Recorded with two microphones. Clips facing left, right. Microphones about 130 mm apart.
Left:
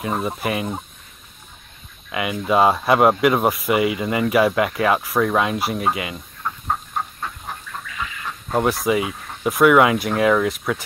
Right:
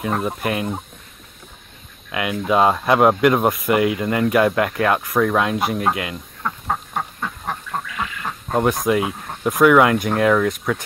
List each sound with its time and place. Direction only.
0.0 s speech: centre (ahead or behind)
2.0 s speech: centre (ahead or behind)
7.2 s duck: 60° right (ahead or behind)
8.5 s speech: centre (ahead or behind)